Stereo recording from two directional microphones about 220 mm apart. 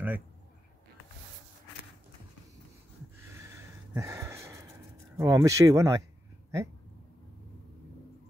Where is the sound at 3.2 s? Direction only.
10° right (ahead or behind).